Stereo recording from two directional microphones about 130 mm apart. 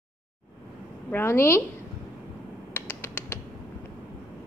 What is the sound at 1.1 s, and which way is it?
Speech, 20° left (ahead or behind).